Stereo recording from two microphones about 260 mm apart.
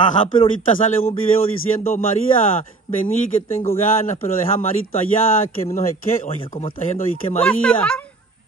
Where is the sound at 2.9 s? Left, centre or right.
Centre.